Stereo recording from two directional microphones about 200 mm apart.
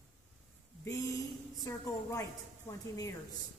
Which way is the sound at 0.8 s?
15° left (ahead or behind).